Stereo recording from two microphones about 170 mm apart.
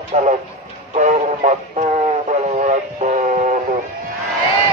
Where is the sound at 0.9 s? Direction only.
45° right (ahead or behind).